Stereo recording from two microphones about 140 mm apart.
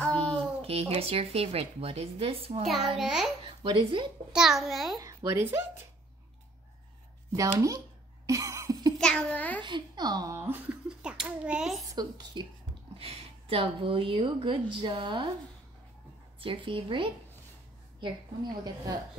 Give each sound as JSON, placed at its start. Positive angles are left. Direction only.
{"t": 0.0, "sound": "a sound", "side_deg": 5}
{"t": 0.6, "sound": "speech", "side_deg": -45}
{"t": 3.0, "sound": "a child's voice", "side_deg": -5}
{"t": 3.6, "sound": "a woman's voice", "side_deg": -35}
{"t": 4.3, "sound": "a child's voice", "side_deg": -5}
{"t": 4.9, "sound": "speech", "side_deg": -25}
{"t": 7.3, "sound": "speech", "side_deg": -25}
{"t": 8.3, "sound": "cough", "side_deg": -20}
{"t": 8.9, "sound": "babbling", "side_deg": 5}
{"t": 9.6, "sound": "a child's voice", "side_deg": -35}
{"t": 11.9, "sound": "speech", "side_deg": -30}
{"t": 12.9, "sound": "a woman's voice", "side_deg": -45}
{"t": 16.3, "sound": "a woman's voice", "side_deg": -40}